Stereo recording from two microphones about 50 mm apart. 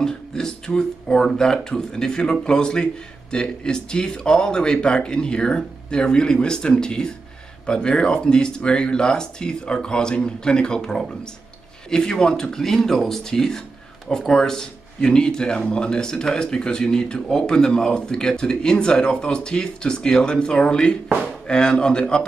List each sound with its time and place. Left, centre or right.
0.0 s music: centre
0.7 s speech: centre